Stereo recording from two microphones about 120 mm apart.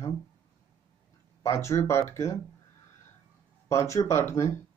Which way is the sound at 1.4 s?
25° left (ahead or behind).